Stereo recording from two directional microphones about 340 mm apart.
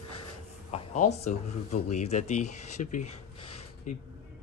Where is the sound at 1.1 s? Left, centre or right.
Centre.